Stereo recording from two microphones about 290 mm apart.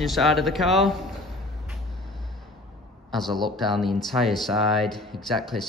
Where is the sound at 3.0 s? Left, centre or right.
Centre.